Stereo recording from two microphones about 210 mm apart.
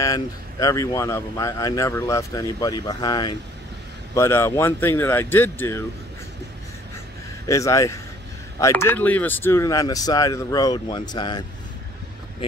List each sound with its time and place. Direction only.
0.0 s speech: 15° left (ahead or behind)
7.4 s speech: 15° left (ahead or behind)